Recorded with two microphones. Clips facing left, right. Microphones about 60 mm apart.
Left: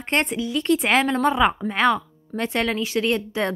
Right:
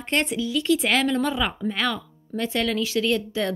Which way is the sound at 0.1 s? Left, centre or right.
Left.